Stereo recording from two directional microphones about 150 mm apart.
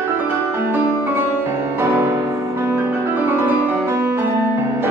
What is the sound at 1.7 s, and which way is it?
Music, 15° right (ahead or behind).